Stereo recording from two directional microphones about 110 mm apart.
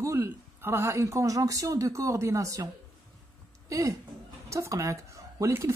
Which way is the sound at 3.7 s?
30° right (ahead or behind).